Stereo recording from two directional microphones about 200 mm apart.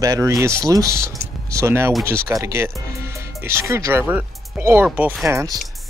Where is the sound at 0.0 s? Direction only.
15° right (ahead or behind).